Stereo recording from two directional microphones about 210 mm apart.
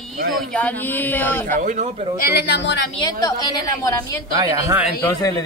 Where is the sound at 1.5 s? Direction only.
35° right (ahead or behind).